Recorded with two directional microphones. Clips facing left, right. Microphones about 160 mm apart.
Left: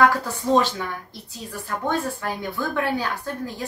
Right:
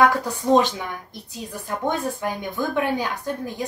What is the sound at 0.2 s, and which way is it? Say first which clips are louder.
A woman's voice: right 2 dB; 15° right (ahead or behind).